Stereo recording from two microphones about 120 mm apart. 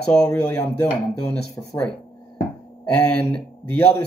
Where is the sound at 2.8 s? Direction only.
10° left (ahead or behind).